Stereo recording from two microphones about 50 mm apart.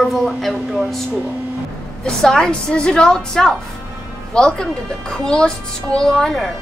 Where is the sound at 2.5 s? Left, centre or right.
Centre.